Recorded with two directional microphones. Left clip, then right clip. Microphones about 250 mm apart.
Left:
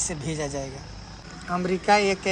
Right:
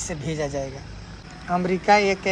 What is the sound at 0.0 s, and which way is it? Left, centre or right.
Speech, centre.